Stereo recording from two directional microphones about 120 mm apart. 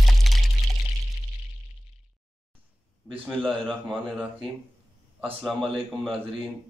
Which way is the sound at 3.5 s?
5° right (ahead or behind).